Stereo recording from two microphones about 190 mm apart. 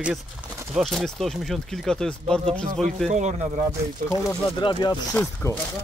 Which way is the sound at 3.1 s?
40° right (ahead or behind).